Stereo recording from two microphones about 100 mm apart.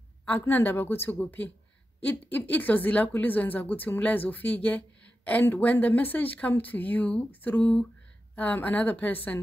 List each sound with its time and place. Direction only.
0.2 s a woman's voice: 20° left (ahead or behind)